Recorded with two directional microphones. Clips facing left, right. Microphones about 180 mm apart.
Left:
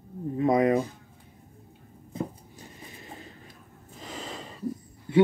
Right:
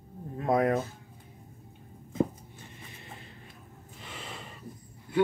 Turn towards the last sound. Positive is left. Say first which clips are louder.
# left 5 dB
turn(degrees=35)  # may be behind; listen again after turning